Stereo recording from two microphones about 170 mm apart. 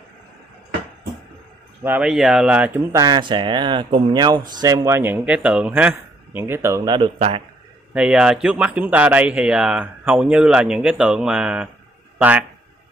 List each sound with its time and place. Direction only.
1.8 s a man's voice: 10° right (ahead or behind); by 7.4 s 35° right (ahead or behind)
7.9 s a man's voice: 5° right (ahead or behind)